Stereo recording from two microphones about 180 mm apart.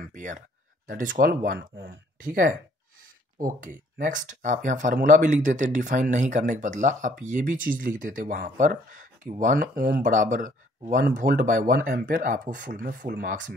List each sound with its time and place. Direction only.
0.1 s speech: 45° right (ahead or behind)